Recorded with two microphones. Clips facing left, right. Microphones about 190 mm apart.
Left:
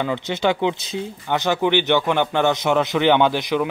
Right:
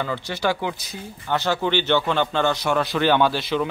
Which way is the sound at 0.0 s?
20° left (ahead or behind).